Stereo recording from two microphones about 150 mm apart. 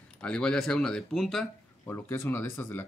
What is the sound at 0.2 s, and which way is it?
Speech, 5° left (ahead or behind).